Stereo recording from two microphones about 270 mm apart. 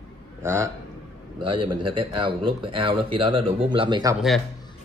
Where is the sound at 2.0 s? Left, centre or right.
Centre.